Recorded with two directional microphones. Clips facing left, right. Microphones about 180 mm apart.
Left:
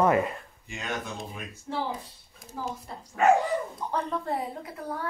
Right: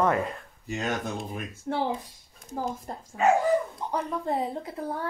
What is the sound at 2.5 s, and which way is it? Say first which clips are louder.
Speech: right 4 dB; 50° right (ahead or behind).